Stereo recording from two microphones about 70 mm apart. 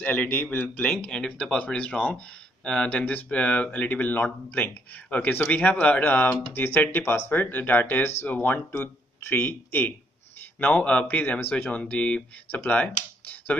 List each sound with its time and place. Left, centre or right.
0.0 s speech: left
10.6 s speech: left